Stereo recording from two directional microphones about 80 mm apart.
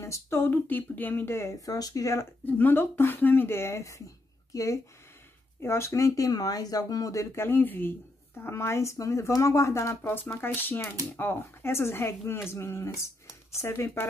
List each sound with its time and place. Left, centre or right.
0.0 s speech: left
1.7 s speech: left
2.4 s speech: left
7.3 s speech: left